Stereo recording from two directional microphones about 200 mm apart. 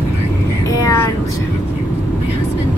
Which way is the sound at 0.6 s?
15° left (ahead or behind).